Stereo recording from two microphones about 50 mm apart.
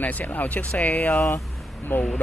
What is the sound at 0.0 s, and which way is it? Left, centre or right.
Speech, left.